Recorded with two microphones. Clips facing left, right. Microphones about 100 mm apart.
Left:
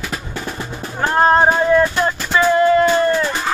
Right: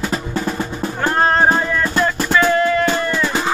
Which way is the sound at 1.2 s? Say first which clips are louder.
Left 3 dB; 25° left (ahead or behind).